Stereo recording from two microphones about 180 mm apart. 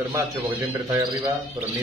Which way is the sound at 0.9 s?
25° right (ahead or behind).